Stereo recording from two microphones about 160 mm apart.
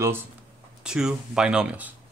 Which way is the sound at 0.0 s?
15° right (ahead or behind).